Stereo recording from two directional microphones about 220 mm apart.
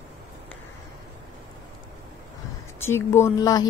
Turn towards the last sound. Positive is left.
turn(degrees=15)  # may be behind; listen again after turning